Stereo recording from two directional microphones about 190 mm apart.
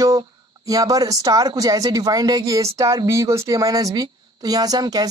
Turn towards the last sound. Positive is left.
turn(degrees=-20)  # may be behind; listen again after turning